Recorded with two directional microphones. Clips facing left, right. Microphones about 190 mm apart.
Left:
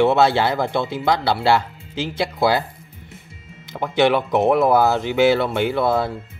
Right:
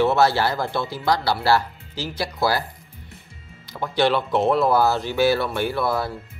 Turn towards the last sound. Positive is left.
turn(degrees=20)  # may be behind; listen again after turning